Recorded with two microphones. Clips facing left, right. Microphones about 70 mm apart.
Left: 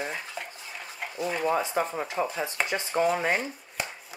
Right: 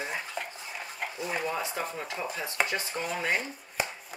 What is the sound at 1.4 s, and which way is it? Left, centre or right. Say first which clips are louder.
Speech: left 6 dB; left.